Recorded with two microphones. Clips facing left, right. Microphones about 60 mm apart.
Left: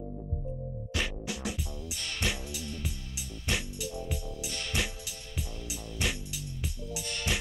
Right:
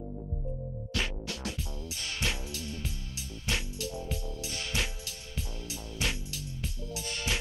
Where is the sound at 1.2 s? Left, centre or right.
Centre.